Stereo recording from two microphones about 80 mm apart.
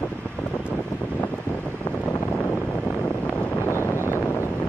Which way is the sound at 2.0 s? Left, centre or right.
Left.